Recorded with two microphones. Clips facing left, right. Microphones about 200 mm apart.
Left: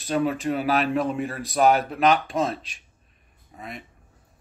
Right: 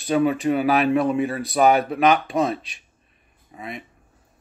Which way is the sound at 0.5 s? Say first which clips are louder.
Right 3 dB; 60° right (ahead or behind).